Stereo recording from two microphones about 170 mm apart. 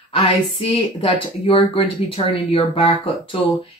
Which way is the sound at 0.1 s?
35° left (ahead or behind).